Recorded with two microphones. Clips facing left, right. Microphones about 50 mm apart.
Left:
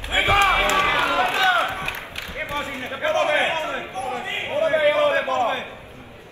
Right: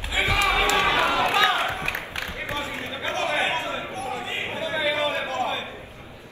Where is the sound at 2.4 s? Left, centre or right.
Left.